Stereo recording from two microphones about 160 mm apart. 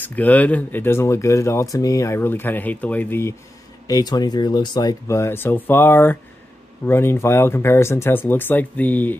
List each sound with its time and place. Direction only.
0.0 s speech: 10° left (ahead or behind)
3.8 s speech: 25° left (ahead or behind)